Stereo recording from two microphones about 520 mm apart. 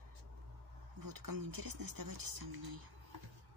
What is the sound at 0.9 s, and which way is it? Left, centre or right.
Speech, right.